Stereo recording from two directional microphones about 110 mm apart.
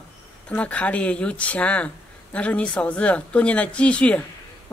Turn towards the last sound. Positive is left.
turn(degrees=10)  # may be behind; listen again after turning